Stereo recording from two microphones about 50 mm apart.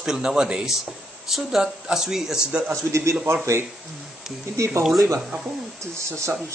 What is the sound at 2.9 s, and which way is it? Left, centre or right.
Speech, right.